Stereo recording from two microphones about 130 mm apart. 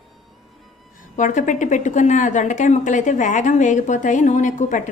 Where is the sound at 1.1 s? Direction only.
75° left (ahead or behind).